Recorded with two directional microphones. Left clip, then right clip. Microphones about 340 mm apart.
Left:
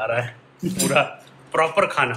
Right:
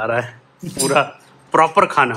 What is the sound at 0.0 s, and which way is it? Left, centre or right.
Speech, right.